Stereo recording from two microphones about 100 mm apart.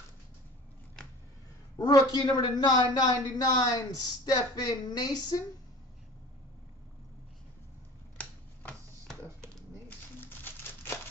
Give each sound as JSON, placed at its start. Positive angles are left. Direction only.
{"t": 1.8, "sound": "a man's voice", "side_deg": 45}
{"t": 8.2, "sound": "a sound", "side_deg": 15}
{"t": 9.8, "sound": "crumpling", "side_deg": 20}